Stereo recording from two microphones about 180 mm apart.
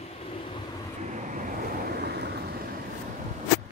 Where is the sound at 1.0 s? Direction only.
45° right (ahead or behind).